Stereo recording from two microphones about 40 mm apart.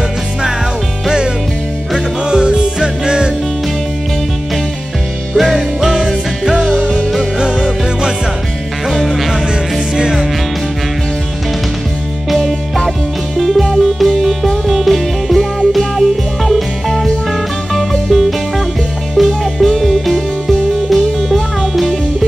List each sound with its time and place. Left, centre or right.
1.0 s music: right
5.3 s music: centre
8.8 s music: centre
12.4 s music: centre